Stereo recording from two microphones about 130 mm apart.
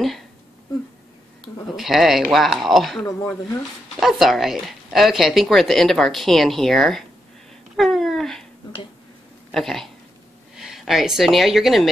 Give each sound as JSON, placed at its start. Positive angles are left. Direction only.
{"t": 1.8, "sound": "speech", "side_deg": 0}
{"t": 3.1, "sound": "speech", "side_deg": 25}
{"t": 4.0, "sound": "speech", "side_deg": 0}
{"t": 7.7, "sound": "a sound", "side_deg": 0}
{"t": 9.5, "sound": "a woman's voice", "side_deg": 0}